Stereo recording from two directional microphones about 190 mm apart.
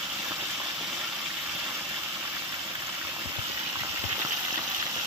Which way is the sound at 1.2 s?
10° right (ahead or behind).